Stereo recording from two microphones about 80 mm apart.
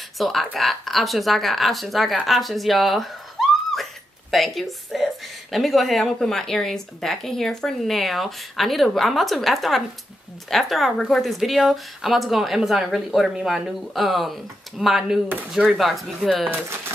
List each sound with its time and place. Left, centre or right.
0.2 s a woman's voice: centre
16.4 s speech: right